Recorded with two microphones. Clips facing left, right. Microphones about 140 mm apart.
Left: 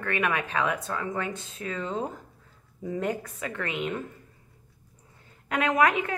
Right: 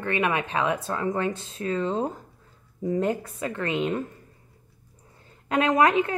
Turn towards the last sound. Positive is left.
turn(degrees=-30)  # may be behind; listen again after turning